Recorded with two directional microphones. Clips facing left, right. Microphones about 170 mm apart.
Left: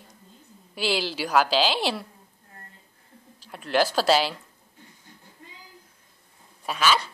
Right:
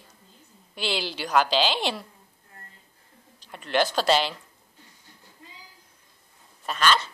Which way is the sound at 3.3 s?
5° left (ahead or behind).